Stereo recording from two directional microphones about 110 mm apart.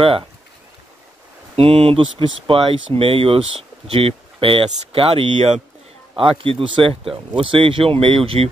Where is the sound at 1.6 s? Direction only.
60° right (ahead or behind).